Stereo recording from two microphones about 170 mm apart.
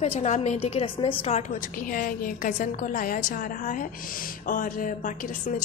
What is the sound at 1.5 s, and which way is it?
A woman's voice, 55° left (ahead or behind).